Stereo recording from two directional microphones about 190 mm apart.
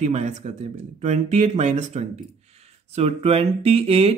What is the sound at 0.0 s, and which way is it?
Speech, 40° right (ahead or behind).